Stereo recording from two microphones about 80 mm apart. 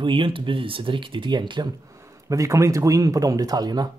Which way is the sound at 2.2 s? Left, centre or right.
Right.